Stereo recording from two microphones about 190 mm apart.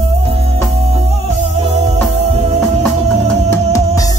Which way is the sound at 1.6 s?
35° right (ahead or behind).